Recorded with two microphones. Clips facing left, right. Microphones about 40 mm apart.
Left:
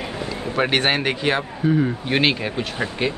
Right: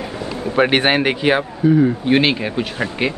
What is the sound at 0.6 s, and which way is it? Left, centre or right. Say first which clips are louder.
Speech: right 5 dB; centre.